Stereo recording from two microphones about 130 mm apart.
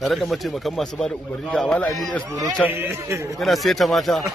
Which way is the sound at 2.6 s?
15° right (ahead or behind).